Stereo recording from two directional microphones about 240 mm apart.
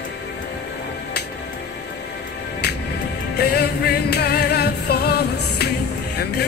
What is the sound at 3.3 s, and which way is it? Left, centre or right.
Music, left.